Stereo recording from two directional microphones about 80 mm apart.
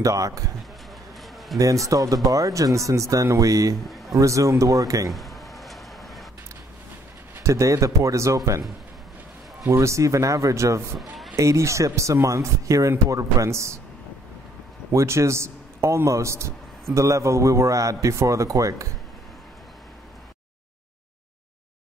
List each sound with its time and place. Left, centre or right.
0.0 s speech: right
1.6 s speech: right
3.8 s a sound: centre
4.1 s speech: right
5.1 s a sound: centre
7.4 s a man's voice: right
9.6 s a man's voice: right
11.0 s run: centre
11.3 s a man's voice: right
14.9 s a man's voice: right